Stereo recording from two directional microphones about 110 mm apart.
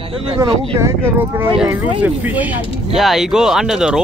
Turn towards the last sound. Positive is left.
turn(degrees=-5)  # may be behind; listen again after turning